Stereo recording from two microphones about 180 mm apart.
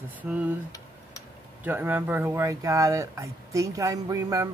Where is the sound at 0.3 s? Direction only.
10° right (ahead or behind).